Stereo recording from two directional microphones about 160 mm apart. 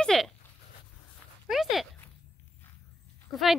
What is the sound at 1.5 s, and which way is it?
Dog, centre (ahead or behind).